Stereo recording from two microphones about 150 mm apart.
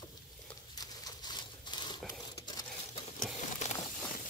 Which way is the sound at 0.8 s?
30° left (ahead or behind).